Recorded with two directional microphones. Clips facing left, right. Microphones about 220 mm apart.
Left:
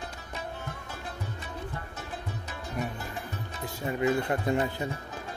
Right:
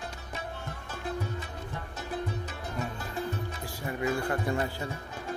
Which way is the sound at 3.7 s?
25° left (ahead or behind).